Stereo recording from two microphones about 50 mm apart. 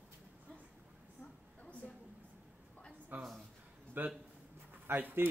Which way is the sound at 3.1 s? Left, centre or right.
Right.